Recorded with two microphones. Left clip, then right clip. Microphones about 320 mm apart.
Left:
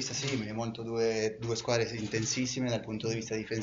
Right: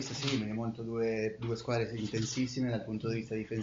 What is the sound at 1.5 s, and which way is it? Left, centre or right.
Speech, left.